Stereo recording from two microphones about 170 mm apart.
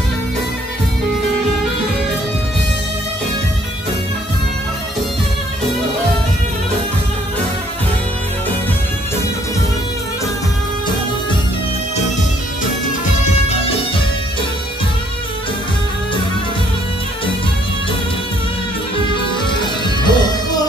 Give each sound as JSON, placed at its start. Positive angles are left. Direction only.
{"t": 19.6, "sound": "music", "side_deg": 25}